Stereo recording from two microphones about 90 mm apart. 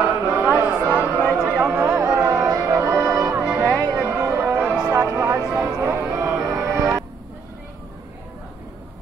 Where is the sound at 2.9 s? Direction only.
20° right (ahead or behind).